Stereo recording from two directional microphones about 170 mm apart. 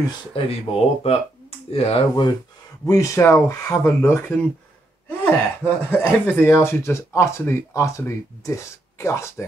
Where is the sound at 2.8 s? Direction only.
20° left (ahead or behind).